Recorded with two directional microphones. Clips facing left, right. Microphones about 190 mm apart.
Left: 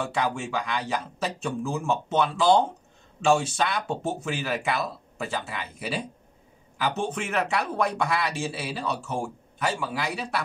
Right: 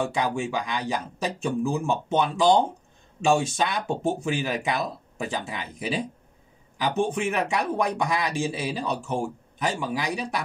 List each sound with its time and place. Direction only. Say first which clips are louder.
0.2 s speech: right 1 dB; 15° right (ahead or behind)